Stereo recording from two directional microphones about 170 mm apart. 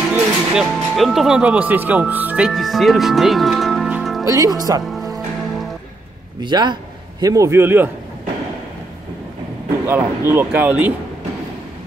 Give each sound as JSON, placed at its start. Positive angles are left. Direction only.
{"t": 0.1, "sound": "speech", "side_deg": 0}
{"t": 4.2, "sound": "speech", "side_deg": -20}
{"t": 4.9, "sound": "music", "side_deg": 0}
{"t": 6.4, "sound": "a man's voice", "side_deg": -25}
{"t": 9.8, "sound": "speech", "side_deg": -15}